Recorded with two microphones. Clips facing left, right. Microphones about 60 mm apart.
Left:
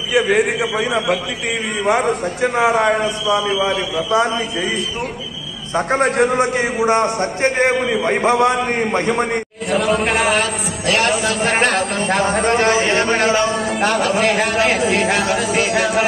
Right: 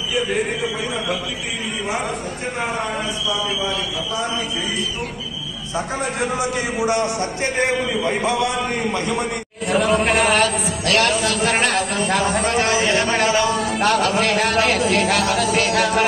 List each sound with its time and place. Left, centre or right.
0.1 s a man's voice: left
1.9 s a man's voice: left
2.9 s a man's voice: left
3.5 s a man's voice: left
5.8 s a man's voice: left
9.7 s a man's voice: centre
10.9 s a man's voice: left